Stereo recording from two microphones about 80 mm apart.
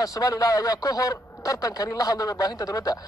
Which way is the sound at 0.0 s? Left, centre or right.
Left.